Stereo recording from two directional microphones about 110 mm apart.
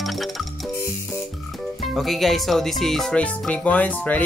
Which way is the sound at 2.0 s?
Centre (ahead or behind).